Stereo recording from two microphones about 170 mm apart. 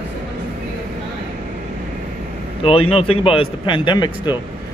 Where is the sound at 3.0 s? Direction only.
35° left (ahead or behind).